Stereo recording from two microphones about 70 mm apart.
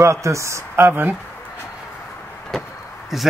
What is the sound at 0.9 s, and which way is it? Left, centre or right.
Speech, right.